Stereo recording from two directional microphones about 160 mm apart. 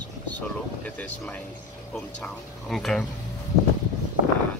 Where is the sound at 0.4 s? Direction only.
10° left (ahead or behind).